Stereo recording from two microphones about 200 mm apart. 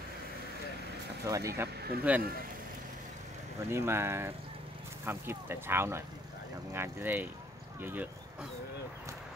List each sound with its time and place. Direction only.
1.2 s speech: 15° right (ahead or behind)
3.7 s speech: 10° right (ahead or behind)